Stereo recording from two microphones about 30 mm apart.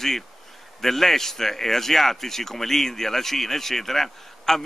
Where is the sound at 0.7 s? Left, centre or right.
Centre.